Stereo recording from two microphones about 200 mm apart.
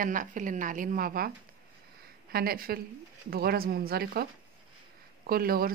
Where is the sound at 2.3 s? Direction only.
50° right (ahead or behind).